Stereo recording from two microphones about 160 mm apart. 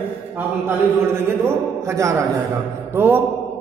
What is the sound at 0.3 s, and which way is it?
Speech, 10° right (ahead or behind).